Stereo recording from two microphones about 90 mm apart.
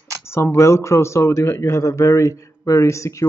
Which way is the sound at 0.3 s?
30° left (ahead or behind).